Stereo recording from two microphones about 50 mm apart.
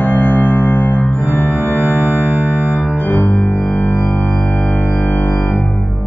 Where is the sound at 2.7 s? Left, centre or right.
Left.